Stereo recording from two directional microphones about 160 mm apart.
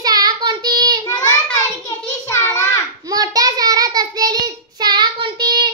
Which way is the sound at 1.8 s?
15° left (ahead or behind).